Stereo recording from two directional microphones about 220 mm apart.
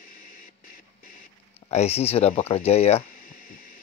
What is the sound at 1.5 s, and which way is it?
Speech, 30° left (ahead or behind).